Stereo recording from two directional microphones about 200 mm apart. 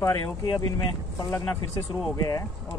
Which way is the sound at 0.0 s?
15° left (ahead or behind).